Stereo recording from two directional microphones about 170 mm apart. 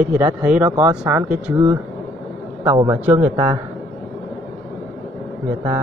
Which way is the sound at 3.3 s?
25° right (ahead or behind).